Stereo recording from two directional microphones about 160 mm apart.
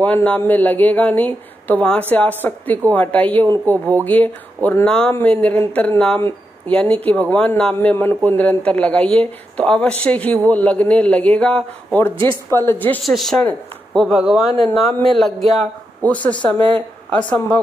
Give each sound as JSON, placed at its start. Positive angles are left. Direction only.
{"t": 0.0, "sound": "speech", "side_deg": 10}
{"t": 13.0, "sound": "speech", "side_deg": 0}